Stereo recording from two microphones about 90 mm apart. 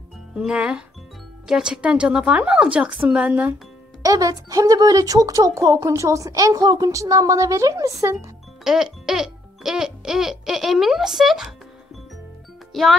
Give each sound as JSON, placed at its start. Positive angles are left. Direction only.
{"t": 0.3, "sound": "a woman's voice", "side_deg": -10}
{"t": 4.0, "sound": "speech", "side_deg": -40}
{"t": 8.6, "sound": "speech", "side_deg": -5}
{"t": 12.7, "sound": "speech", "side_deg": -5}